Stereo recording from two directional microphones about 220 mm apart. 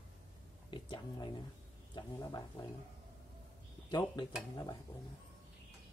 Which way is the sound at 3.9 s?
20° left (ahead or behind).